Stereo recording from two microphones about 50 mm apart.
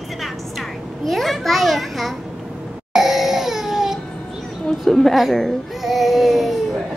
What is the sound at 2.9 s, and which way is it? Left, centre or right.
Crying, centre.